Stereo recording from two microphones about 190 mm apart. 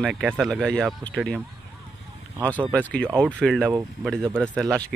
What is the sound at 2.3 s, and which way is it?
Speech, 10° right (ahead or behind).